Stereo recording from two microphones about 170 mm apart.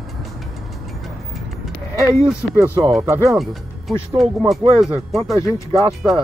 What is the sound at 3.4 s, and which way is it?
Speech, centre (ahead or behind).